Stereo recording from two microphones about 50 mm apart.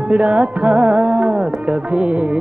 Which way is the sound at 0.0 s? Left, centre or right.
Right.